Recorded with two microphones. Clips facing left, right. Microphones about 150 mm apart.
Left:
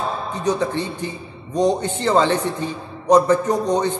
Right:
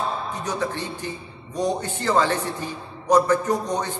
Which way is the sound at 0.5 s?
20° left (ahead or behind).